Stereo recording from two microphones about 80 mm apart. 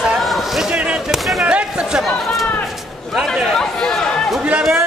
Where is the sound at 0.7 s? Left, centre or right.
Centre.